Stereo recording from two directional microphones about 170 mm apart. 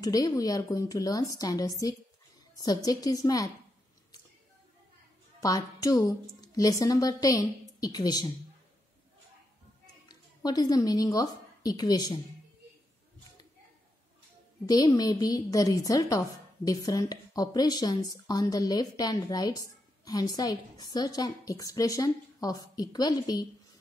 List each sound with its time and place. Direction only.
0.0 s speech: 20° left (ahead or behind)
5.4 s speech: 20° left (ahead or behind)
10.0 s a woman's voice: 25° left (ahead or behind)
14.7 s speech: 20° left (ahead or behind)